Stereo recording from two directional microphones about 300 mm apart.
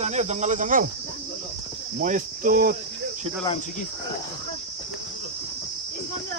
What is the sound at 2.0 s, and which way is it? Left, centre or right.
Cricket, right.